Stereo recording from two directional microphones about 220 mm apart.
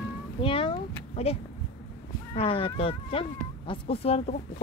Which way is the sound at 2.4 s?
25° left (ahead or behind).